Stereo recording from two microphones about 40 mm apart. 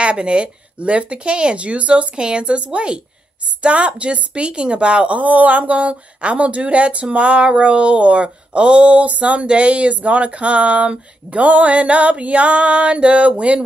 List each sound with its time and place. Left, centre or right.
0.0 s a woman's voice: right